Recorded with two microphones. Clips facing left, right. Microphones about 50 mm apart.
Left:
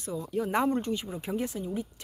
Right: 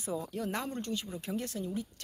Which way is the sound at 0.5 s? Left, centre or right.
Left.